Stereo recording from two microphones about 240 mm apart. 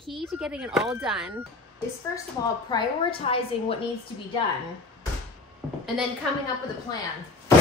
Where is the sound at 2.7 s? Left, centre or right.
Left.